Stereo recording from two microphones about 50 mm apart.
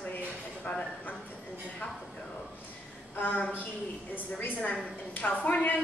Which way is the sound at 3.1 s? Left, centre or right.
Left.